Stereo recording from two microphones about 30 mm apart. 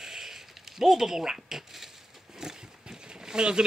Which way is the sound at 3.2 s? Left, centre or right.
Right.